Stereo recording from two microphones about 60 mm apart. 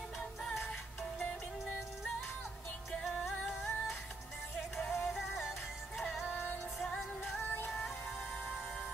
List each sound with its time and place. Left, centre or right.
3.0 s music: centre
5.0 s music: centre
6.2 s music: left